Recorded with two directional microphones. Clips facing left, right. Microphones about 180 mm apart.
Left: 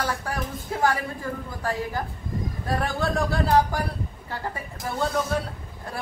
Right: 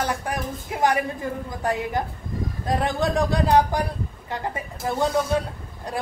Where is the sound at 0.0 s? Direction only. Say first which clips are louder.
Right 2 dB; 20° right (ahead or behind).